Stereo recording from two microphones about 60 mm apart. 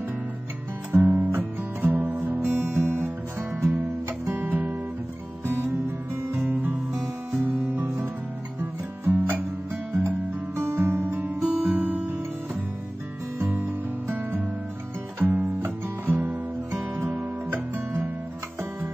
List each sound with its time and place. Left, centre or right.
0.9 s music: right
3.7 s music: right
6.4 s music: right
13.4 s music: right
15.1 s guitar: right